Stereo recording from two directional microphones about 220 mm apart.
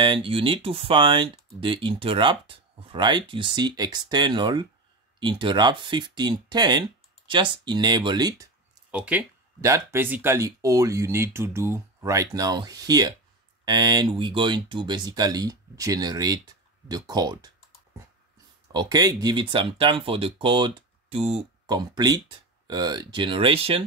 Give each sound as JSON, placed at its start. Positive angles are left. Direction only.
{"t": 0.0, "sound": "speech", "side_deg": -25}
{"t": 8.9, "sound": "speech", "side_deg": -5}
{"t": 18.7, "sound": "speech", "side_deg": -20}